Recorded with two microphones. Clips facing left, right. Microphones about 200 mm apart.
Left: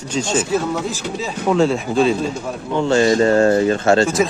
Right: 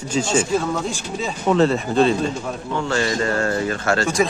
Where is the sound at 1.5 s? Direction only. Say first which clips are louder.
Left 1 dB; centre (ahead or behind).